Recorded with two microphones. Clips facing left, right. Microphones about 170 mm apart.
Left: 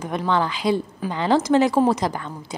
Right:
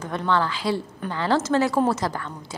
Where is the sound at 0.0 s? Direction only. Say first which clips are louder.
Left 1 dB; 15° left (ahead or behind).